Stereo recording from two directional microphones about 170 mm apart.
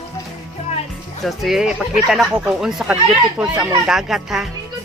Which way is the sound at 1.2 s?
Centre (ahead or behind).